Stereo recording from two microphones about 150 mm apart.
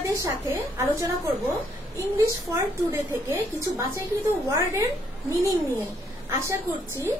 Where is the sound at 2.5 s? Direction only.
20° right (ahead or behind).